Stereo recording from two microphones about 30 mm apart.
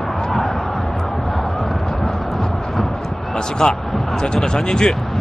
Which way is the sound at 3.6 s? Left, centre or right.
Left.